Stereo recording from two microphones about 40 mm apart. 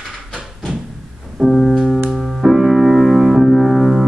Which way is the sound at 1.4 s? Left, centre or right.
Centre.